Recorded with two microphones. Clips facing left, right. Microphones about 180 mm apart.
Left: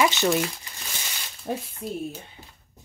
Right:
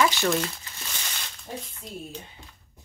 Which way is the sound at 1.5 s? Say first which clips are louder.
Left 7 dB; 70° left (ahead or behind).